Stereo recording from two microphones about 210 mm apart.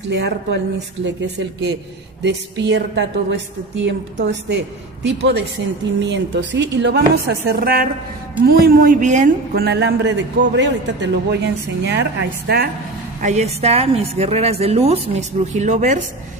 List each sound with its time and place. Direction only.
0.1 s a woman's voice: 55° right (ahead or behind); by 9.3 s 35° right (ahead or behind)
9.5 s a woman's voice: 50° right (ahead or behind)
13.2 s a woman's voice: 30° right (ahead or behind)